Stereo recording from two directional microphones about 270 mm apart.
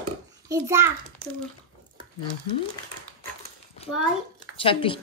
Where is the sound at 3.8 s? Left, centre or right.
Left.